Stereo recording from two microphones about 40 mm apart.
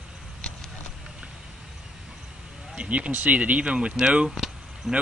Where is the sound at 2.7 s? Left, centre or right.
Right.